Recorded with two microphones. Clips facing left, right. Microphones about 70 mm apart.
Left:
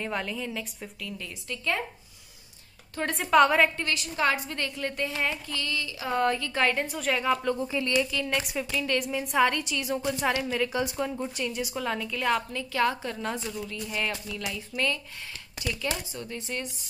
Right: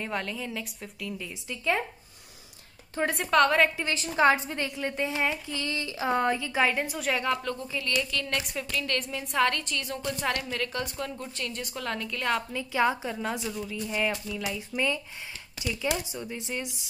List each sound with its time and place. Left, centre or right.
0.0 s a woman's voice: centre
3.0 s a woman's voice: centre
4.2 s a woman's voice: right; by 7.3 s centre
7.6 s a woman's voice: left
8.1 s a woman's voice: centre
12.7 s a woman's voice: centre
15.7 s a woman's voice: centre